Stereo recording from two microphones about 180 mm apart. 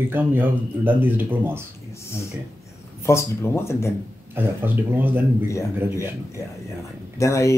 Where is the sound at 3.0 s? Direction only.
15° left (ahead or behind).